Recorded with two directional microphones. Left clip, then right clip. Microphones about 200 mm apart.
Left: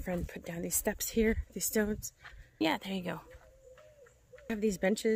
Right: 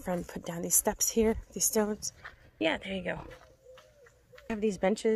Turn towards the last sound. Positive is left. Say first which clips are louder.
# right 2 dB
turn(degrees=10)  # may be behind; listen again after turning